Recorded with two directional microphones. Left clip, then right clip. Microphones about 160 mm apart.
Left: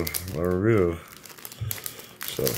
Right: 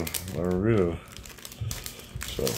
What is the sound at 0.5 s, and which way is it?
Speech, 20° left (ahead or behind).